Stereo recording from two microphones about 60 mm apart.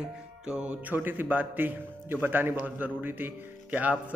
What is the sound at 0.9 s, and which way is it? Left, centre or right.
A man's voice, right.